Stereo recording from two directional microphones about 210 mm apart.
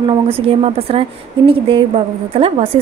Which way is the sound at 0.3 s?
25° right (ahead or behind).